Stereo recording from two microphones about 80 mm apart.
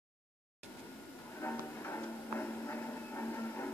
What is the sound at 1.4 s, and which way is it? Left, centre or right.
Music, left.